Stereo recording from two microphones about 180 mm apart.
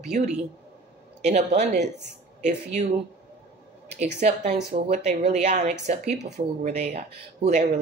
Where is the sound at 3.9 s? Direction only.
40° right (ahead or behind).